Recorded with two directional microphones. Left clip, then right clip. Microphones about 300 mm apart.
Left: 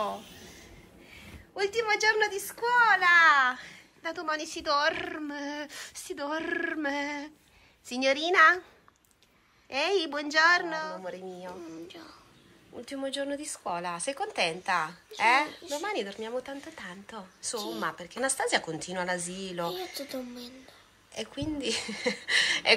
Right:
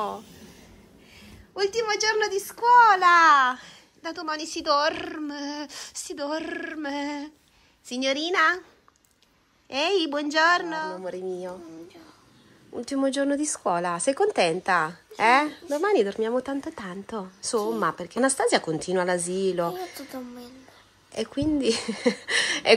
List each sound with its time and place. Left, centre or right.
1.1 s a child's voice: centre
9.7 s a child's voice: centre
12.9 s speech: right
20.1 s speech: centre
21.1 s speech: right